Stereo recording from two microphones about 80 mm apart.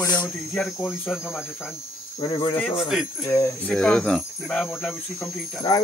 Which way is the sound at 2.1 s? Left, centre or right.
Left.